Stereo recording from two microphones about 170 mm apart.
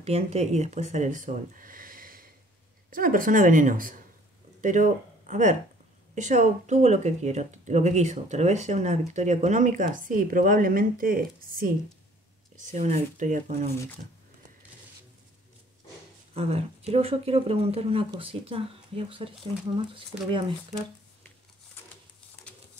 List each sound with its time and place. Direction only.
0.0 s speech: 40° right (ahead or behind); by 11.7 s 55° right (ahead or behind)
12.5 s speech: 45° right (ahead or behind)
16.3 s speech: 35° right (ahead or behind)